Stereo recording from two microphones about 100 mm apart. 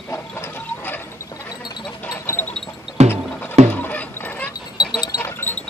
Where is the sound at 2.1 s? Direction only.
20° left (ahead or behind).